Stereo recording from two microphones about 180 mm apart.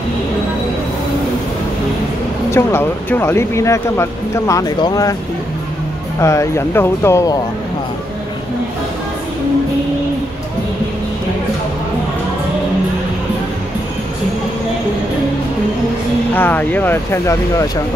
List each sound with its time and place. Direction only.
2.5 s speech: 10° left (ahead or behind)
6.1 s speech: 15° left (ahead or behind)
16.3 s speech: 10° left (ahead or behind)